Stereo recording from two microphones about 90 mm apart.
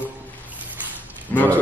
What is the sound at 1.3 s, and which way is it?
Dog, 20° left (ahead or behind).